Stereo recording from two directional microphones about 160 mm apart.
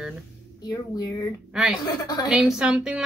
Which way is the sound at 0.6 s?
25° left (ahead or behind).